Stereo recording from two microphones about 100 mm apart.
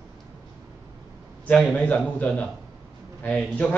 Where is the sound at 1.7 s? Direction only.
15° left (ahead or behind).